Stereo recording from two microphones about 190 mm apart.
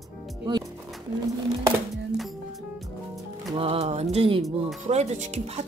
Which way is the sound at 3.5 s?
30° right (ahead or behind).